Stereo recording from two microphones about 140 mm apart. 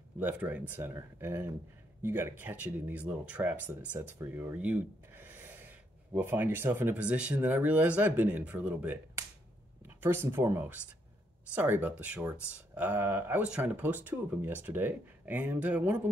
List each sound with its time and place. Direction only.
0.2 s speech: 10° right (ahead or behind)